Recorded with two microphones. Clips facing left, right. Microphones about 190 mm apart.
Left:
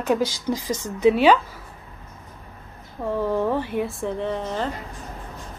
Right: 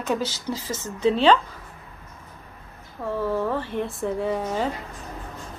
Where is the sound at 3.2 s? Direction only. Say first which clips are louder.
Left 2 dB; 15° left (ahead or behind).